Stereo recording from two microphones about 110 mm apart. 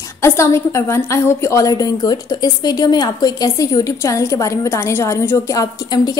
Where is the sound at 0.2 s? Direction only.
25° left (ahead or behind).